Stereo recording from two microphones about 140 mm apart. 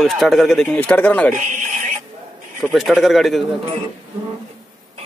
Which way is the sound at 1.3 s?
60° right (ahead or behind).